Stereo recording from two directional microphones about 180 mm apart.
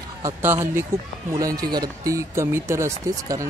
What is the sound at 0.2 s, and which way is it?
Speech, 15° right (ahead or behind).